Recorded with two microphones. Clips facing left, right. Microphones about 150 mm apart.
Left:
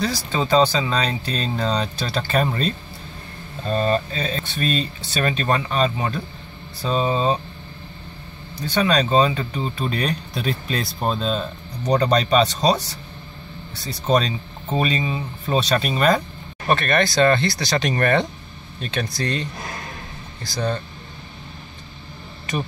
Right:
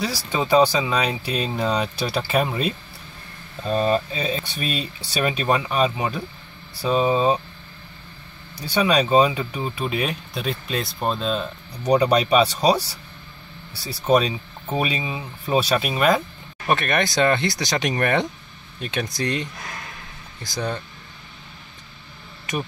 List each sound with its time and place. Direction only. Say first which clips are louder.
0.0 s speech: left 1 dB; 10° right (ahead or behind)
8.5 s speech: even; 10° right (ahead or behind)